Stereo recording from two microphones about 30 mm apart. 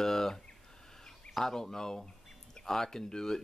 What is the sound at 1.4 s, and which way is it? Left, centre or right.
Speech, centre.